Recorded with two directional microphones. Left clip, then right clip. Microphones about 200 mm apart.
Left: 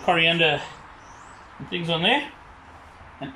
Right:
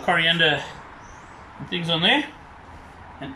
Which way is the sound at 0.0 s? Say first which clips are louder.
Even; 10° left (ahead or behind).